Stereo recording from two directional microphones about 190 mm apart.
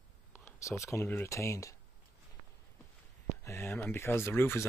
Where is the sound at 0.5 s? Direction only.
15° left (ahead or behind).